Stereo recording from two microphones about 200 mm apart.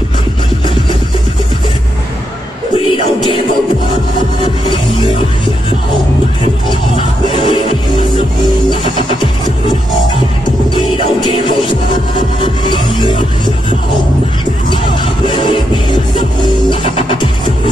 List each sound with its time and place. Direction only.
2.8 s music: 25° left (ahead or behind)
6.7 s music: 25° left (ahead or behind)
8.6 s music: 25° left (ahead or behind)
11.2 s music: 25° left (ahead or behind)
15.2 s music: 25° left (ahead or behind)